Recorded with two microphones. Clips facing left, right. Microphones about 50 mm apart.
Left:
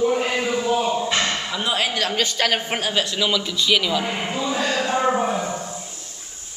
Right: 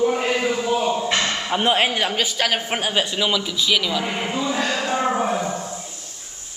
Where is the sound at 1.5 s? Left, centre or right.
Right.